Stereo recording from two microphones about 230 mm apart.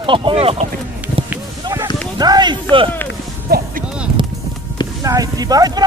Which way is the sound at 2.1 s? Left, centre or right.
Centre.